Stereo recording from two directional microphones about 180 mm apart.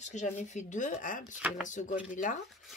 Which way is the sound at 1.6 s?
45° left (ahead or behind).